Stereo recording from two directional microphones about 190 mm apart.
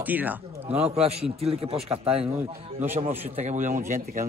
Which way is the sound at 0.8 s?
35° right (ahead or behind).